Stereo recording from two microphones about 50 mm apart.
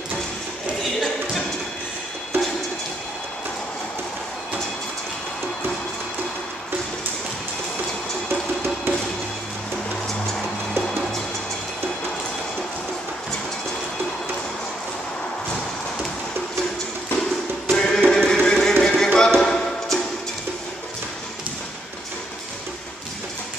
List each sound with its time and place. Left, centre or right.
8.3 s music: right
17.6 s music: centre
18.3 s a sound: centre
19.1 s music: centre